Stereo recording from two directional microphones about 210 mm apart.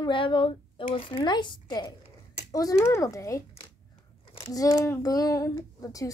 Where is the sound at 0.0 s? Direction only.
25° left (ahead or behind).